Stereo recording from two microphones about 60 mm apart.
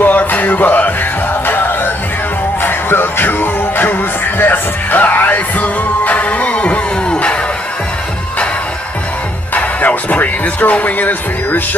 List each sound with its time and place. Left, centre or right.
0.0 s music: left
9.5 s music: left